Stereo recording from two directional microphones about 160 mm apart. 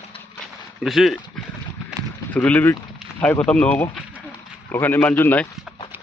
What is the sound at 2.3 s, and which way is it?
A man's voice, 10° left (ahead or behind).